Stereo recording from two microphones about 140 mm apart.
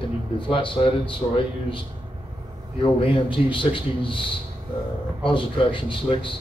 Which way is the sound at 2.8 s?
40° left (ahead or behind).